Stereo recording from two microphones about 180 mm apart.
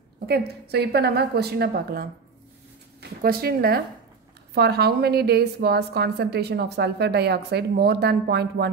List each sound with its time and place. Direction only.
0.3 s a woman's voice: 65° right (ahead or behind)